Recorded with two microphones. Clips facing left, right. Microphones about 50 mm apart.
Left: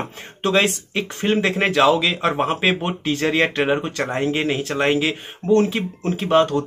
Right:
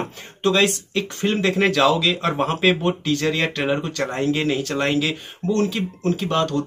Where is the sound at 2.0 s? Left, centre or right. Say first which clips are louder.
Left 1 dB; left.